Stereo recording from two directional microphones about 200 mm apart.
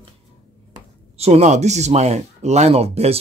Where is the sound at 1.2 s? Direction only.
30° right (ahead or behind).